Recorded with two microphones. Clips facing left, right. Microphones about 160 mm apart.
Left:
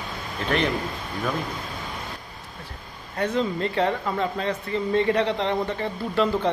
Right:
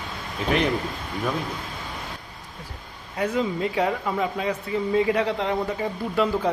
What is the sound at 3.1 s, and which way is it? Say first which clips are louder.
A woman's voice: even; 10° right (ahead or behind).